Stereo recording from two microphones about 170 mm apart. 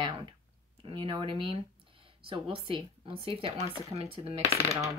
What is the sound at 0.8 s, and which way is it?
Speech, 30° right (ahead or behind).